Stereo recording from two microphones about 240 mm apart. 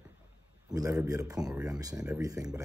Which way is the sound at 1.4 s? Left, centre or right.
Centre.